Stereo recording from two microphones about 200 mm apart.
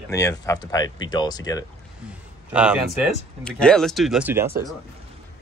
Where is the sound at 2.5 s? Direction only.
5° right (ahead or behind).